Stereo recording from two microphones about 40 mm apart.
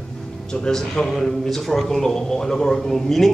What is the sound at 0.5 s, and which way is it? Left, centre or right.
A man's voice, centre.